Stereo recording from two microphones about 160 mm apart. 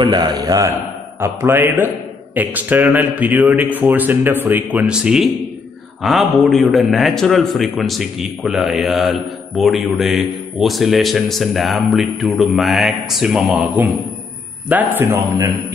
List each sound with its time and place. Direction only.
0.0 s a man's voice: 25° right (ahead or behind); by 13.7 s 5° right (ahead or behind)
14.7 s speech: 10° right (ahead or behind)